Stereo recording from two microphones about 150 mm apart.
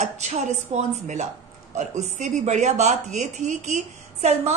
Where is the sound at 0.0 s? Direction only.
50° right (ahead or behind).